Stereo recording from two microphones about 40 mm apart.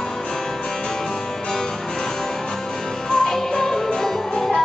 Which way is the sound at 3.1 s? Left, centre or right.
Centre.